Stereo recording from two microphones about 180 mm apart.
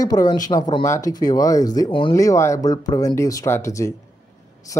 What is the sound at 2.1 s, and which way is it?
Speech, 15° left (ahead or behind).